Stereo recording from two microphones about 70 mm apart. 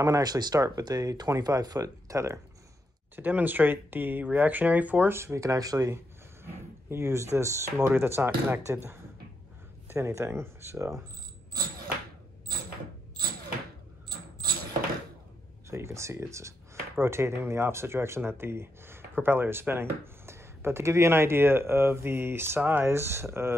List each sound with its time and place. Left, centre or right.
0.0 s speech: right
0.6 s speech: right
3.2 s speech: right
5.4 s speech: right
6.4 s speech: right
15.7 s speech: right
22.8 s speech: right